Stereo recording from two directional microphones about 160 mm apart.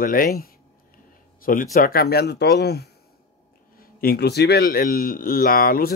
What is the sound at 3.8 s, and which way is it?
Speech, 70° left (ahead or behind).